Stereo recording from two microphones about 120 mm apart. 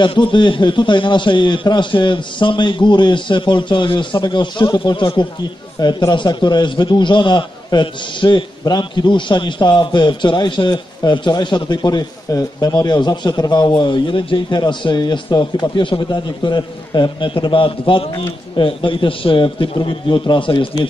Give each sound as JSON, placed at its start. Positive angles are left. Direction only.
{"t": 0.0, "sound": "a man's voice", "side_deg": 40}